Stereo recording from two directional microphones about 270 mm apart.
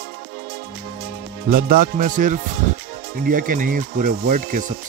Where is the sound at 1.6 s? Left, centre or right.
Right.